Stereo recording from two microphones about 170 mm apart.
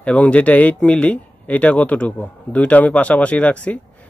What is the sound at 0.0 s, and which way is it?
Speech, 5° left (ahead or behind).